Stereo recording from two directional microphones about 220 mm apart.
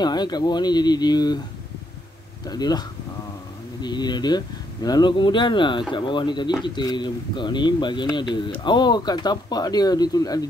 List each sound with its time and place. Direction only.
0.0 s speech: 20° left (ahead or behind)
2.4 s speech: 20° left (ahead or behind)